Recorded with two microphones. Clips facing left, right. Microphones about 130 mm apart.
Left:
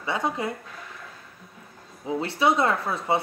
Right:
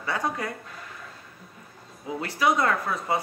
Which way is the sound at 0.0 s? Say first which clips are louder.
Left 2 dB; 20° left (ahead or behind).